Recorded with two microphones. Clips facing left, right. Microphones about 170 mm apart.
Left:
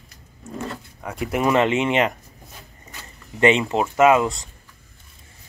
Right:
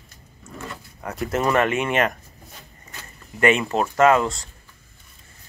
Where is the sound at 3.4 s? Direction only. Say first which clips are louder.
Left 2 dB; 20° left (ahead or behind).